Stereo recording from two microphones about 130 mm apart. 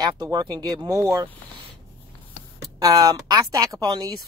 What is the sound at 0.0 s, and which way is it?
Speech, 30° right (ahead or behind).